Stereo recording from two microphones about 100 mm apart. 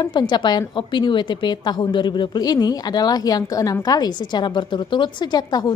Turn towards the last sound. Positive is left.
turn(degrees=45)  # may be behind; listen again after turning